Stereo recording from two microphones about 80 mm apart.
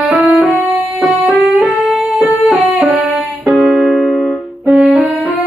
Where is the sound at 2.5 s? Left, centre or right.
Centre.